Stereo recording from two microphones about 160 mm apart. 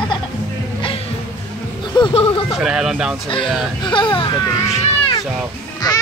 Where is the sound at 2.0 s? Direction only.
35° left (ahead or behind).